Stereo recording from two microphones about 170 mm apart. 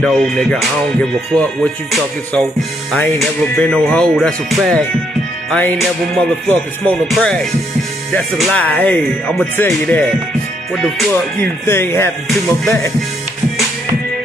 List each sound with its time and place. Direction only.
0.0 s music: centre (ahead or behind)
2.9 s speech: 10° left (ahead or behind)
3.2 s music: 5° left (ahead or behind)
5.5 s speech: 5° left (ahead or behind)
7.1 s music: 5° left (ahead or behind)
8.4 s speech: 10° left (ahead or behind)
10.7 s music: centre (ahead or behind)
11.3 s speech: 15° left (ahead or behind)